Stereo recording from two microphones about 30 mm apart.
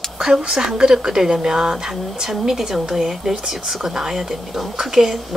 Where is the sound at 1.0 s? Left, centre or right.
Centre.